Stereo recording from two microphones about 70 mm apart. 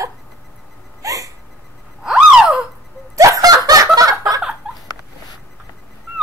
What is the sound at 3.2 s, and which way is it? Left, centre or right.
Snicker, right.